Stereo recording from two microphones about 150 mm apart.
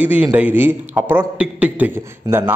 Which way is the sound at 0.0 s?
10° right (ahead or behind).